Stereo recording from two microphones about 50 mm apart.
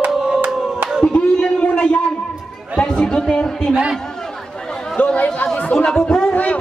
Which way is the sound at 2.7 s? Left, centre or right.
Centre.